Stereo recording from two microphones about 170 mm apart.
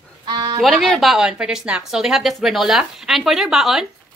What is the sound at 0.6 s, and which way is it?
A woman's voice, centre (ahead or behind).